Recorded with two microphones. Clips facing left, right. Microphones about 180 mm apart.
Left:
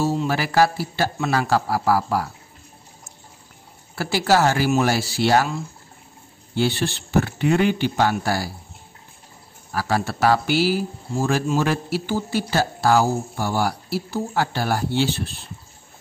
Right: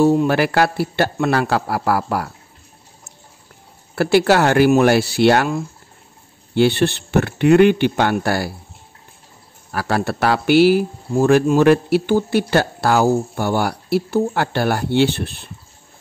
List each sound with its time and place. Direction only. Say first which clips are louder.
0.0 s speech: right 8 dB; 60° right (ahead or behind)
3.9 s speech: right 5 dB; 60° right (ahead or behind)
9.7 s speech: right 3 dB; 60° right (ahead or behind)